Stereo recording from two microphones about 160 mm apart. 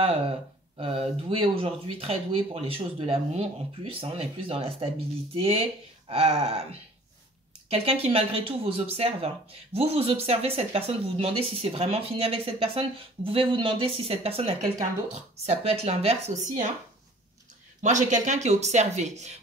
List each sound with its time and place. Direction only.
0.7 s a woman's voice: 35° right (ahead or behind)
17.8 s a woman's voice: 50° right (ahead or behind)